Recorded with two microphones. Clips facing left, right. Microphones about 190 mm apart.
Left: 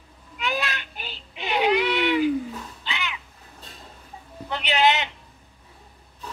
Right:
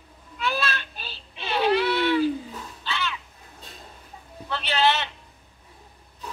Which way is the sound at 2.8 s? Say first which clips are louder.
Right 4 dB; 15° left (ahead or behind).